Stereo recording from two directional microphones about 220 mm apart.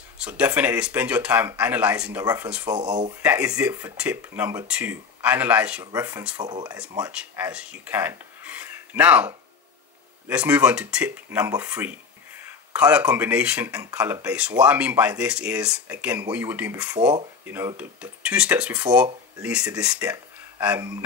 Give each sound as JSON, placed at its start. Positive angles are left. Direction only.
{"t": 0.2, "sound": "speech", "side_deg": -5}
{"t": 3.2, "sound": "speech", "side_deg": -5}
{"t": 7.1, "sound": "speech", "side_deg": -5}